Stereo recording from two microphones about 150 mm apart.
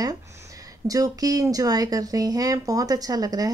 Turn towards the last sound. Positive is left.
turn(degrees=-25)  # may be behind; listen again after turning